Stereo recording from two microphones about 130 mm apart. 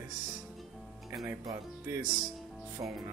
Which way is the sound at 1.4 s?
20° right (ahead or behind).